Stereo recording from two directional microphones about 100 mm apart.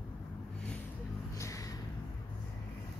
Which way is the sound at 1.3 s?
35° left (ahead or behind).